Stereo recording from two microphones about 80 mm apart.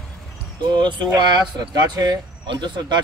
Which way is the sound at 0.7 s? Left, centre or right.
Right.